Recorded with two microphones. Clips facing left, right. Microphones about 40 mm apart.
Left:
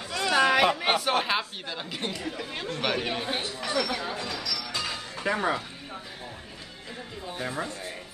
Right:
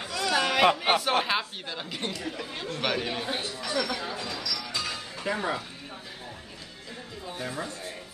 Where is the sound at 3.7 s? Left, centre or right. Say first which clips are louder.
Left 1 dB; centre.